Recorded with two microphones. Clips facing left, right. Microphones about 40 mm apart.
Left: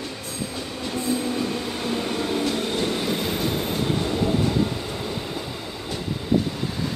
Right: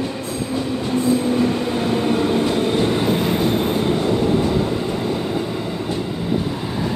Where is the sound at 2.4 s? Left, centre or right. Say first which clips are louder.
Right 6 dB; centre.